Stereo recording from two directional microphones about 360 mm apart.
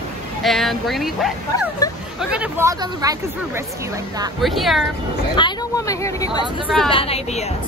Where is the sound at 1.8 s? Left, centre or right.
Centre.